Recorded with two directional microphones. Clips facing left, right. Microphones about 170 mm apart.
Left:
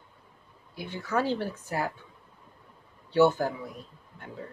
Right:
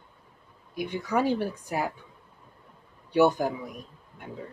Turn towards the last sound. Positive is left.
turn(degrees=-15)  # may be behind; listen again after turning